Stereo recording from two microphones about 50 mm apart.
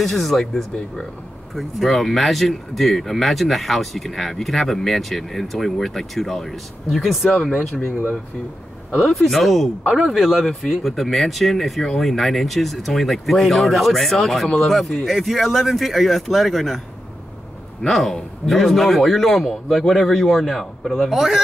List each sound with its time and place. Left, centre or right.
0.0 s speech: centre
7.7 s speech: left
9.1 s speech: centre
9.8 s speech: centre
10.4 s speech: centre
17.8 s speech: centre